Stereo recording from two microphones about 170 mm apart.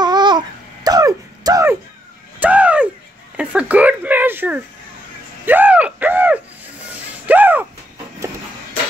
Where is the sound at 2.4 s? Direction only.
10° right (ahead or behind).